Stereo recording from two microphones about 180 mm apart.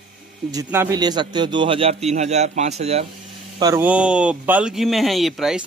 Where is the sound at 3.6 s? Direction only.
20° right (ahead or behind).